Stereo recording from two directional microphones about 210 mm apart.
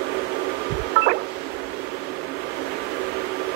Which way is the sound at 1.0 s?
50° right (ahead or behind).